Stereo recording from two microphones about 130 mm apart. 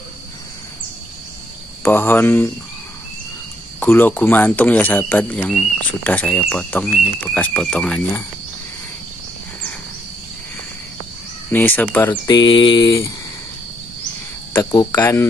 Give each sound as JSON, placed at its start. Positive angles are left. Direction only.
{"t": 1.8, "sound": "speech", "side_deg": 15}
{"t": 3.8, "sound": "speech", "side_deg": 15}
{"t": 11.5, "sound": "speech", "side_deg": 15}
{"t": 12.1, "sound": "mantra", "side_deg": 35}
{"t": 12.8, "sound": "speech", "side_deg": 25}
{"t": 14.7, "sound": "mantra", "side_deg": 30}
{"t": 15.0, "sound": "speech", "side_deg": 20}